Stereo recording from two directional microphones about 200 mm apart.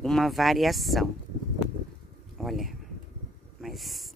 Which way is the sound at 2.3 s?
Centre (ahead or behind).